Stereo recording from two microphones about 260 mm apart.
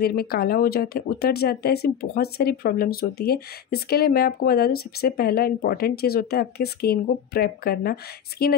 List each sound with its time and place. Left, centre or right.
0.0 s speech: left